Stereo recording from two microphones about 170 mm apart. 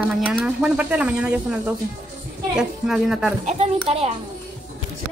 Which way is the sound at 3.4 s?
35° right (ahead or behind).